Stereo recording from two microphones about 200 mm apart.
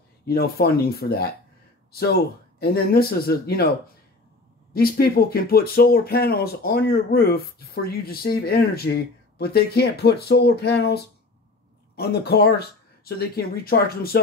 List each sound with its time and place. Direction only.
0.2 s speech: 50° left (ahead or behind)
4.7 s speech: 50° left (ahead or behind)